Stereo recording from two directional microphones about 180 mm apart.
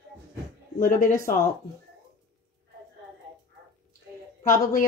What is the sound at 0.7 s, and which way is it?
Speech, 45° left (ahead or behind).